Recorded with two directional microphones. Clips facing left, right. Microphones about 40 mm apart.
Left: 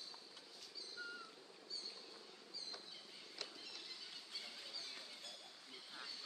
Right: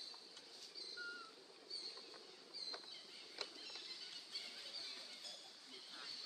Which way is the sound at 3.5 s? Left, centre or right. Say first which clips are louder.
Even; centre.